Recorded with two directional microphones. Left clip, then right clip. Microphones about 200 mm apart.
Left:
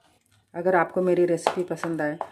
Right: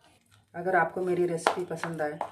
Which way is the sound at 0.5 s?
55° left (ahead or behind).